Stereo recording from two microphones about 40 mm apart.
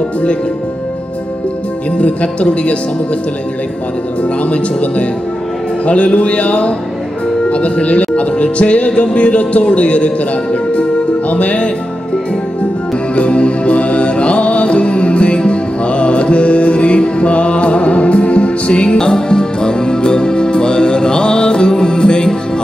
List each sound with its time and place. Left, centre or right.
2.0 s speech: left
4.4 s speech: left
13.1 s music: left